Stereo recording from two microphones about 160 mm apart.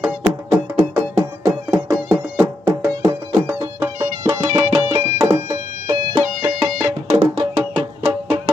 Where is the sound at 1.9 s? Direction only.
10° right (ahead or behind).